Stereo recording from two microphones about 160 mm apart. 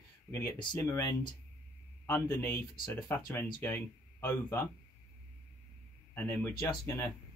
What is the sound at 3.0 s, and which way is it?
Speech, 25° left (ahead or behind).